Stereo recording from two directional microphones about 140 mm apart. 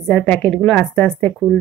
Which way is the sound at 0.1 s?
10° left (ahead or behind).